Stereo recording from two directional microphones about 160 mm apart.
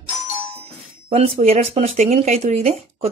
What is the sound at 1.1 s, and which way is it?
Speech, 40° right (ahead or behind).